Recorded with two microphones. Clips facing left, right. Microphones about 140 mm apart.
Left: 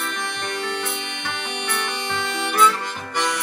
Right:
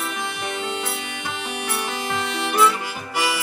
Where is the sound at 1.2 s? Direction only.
5° right (ahead or behind).